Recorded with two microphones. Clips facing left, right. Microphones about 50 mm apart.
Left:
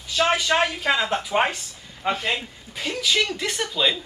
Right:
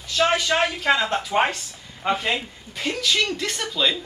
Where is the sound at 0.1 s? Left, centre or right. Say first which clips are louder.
Even; centre.